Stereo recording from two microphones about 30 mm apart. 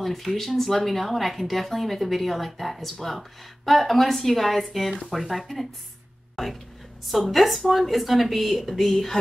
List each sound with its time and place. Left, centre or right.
0.0 s speech: centre
8.9 s speech: centre